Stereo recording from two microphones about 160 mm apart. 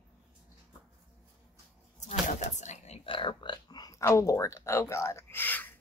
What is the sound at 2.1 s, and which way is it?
Whispering, 50° left (ahead or behind).